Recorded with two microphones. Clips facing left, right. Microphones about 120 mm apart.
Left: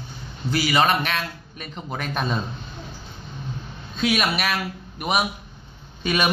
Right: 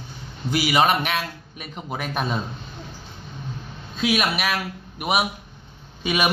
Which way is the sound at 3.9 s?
5° right (ahead or behind).